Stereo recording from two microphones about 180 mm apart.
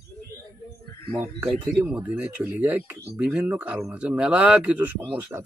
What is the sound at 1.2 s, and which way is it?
A man's voice, 10° right (ahead or behind).